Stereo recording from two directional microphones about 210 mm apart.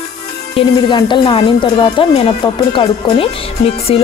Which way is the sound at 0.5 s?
25° left (ahead or behind).